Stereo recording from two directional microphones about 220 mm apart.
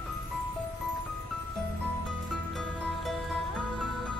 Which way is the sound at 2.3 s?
Centre (ahead or behind).